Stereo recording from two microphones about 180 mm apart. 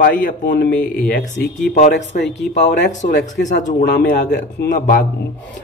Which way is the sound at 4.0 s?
65° left (ahead or behind).